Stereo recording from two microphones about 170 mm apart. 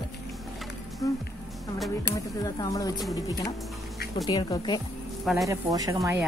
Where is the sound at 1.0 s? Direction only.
20° left (ahead or behind).